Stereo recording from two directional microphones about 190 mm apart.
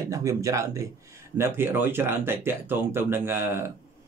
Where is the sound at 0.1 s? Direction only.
15° right (ahead or behind).